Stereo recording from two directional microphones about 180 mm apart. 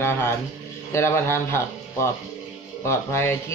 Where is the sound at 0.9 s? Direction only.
15° left (ahead or behind).